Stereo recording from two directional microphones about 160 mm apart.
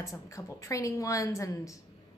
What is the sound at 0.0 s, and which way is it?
A woman's voice, 20° left (ahead or behind).